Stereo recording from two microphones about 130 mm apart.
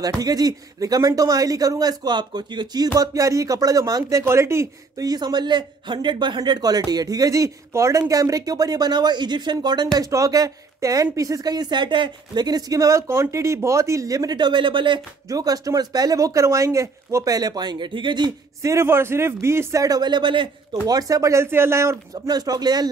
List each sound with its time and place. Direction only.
0.0 s speech: 30° right (ahead or behind)
15.2 s speech: 30° right (ahead or behind)
18.6 s speech: 20° right (ahead or behind)